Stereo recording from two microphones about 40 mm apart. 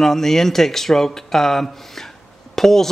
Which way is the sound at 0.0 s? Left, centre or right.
Centre.